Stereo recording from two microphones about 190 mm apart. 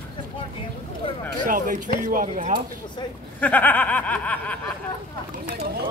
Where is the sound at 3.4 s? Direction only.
10° left (ahead or behind).